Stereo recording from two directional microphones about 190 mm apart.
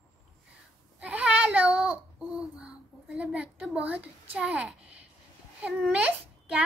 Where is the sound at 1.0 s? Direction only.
5° right (ahead or behind).